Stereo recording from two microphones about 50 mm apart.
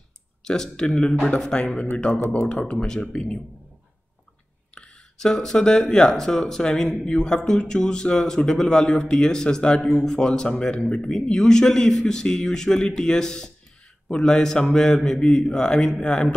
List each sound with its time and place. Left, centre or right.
0.4 s speech: centre
3.0 s speech: centre
4.7 s speech: centre
11.1 s speech: centre